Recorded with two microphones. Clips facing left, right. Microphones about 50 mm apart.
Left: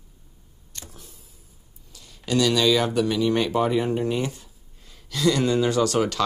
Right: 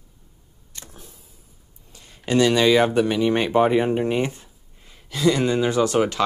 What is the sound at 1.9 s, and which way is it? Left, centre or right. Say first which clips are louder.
Speech: right 3 dB; right.